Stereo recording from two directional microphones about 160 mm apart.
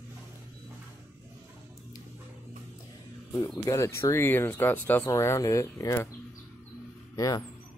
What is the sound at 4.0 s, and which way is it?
Speech, 15° left (ahead or behind).